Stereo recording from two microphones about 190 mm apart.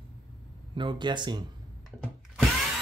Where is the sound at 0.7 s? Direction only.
25° right (ahead or behind).